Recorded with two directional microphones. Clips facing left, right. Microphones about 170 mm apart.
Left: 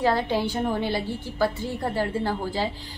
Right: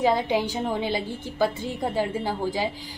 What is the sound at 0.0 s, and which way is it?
A woman's voice, 15° right (ahead or behind).